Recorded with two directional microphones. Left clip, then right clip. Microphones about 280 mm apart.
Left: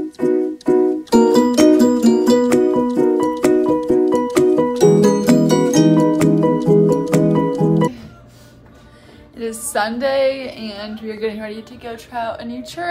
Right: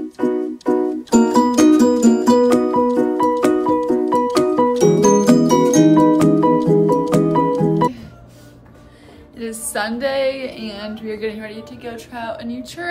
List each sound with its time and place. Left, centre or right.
1.1 s music: centre
9.4 s a woman's voice: centre